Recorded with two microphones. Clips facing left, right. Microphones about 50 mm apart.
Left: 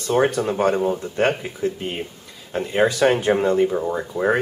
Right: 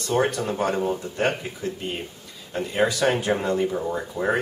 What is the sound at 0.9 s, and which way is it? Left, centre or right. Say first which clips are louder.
Speech: left 4 dB; left.